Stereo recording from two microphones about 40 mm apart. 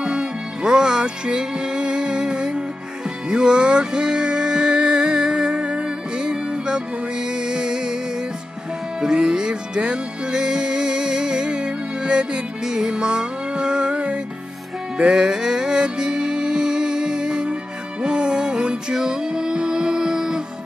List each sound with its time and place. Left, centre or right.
0.0 s music: right
9.0 s music: centre
15.0 s music: centre